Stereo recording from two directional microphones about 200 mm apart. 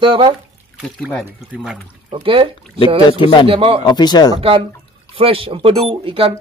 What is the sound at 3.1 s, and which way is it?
Speech, 25° left (ahead or behind).